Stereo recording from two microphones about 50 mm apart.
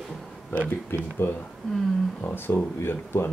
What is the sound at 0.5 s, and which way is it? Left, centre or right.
Speech, left.